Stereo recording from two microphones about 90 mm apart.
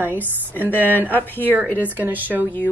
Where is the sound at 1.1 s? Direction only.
20° left (ahead or behind).